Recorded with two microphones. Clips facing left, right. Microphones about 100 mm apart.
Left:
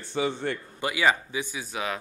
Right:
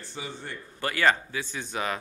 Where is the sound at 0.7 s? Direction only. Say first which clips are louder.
Right 1 dB; 10° left (ahead or behind).